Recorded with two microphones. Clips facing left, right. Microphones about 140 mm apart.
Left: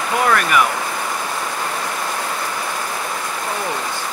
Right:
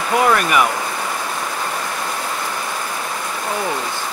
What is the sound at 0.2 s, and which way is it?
Speech, 20° right (ahead or behind).